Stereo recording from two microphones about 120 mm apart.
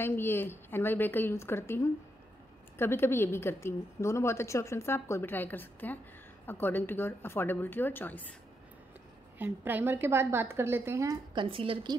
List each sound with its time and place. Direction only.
0.0 s a woman's voice: 20° left (ahead or behind)
9.4 s a woman's voice: 15° right (ahead or behind)
11.3 s a woman's voice: 45° right (ahead or behind)